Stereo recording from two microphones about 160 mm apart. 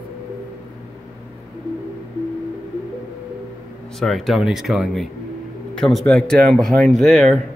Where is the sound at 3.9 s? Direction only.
Centre (ahead or behind).